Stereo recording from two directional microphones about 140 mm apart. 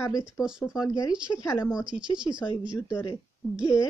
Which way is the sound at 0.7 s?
25° left (ahead or behind).